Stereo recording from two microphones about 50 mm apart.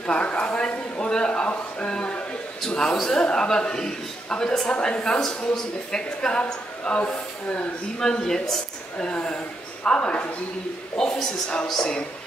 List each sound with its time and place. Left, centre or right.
0.0 s a woman's voice: left
8.0 s a man's voice: centre
11.0 s a man's voice: centre